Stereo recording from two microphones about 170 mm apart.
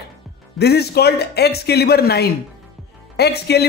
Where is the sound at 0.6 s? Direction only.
70° left (ahead or behind).